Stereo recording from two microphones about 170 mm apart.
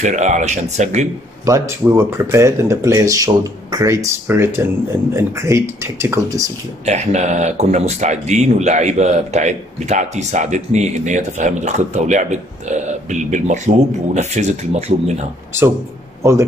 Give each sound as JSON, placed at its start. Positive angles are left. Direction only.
{"t": 0.0, "sound": "speech", "side_deg": -45}
{"t": 1.4, "sound": "speech", "side_deg": -15}
{"t": 6.9, "sound": "speech", "side_deg": -45}
{"t": 16.2, "sound": "speech", "side_deg": -15}